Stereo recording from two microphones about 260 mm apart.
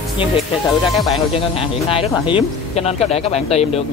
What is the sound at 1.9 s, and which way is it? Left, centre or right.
Speech, centre.